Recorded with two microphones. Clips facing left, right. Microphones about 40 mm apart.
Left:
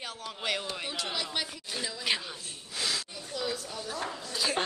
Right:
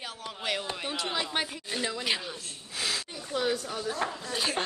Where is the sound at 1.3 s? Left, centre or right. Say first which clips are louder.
Right 3 dB; right.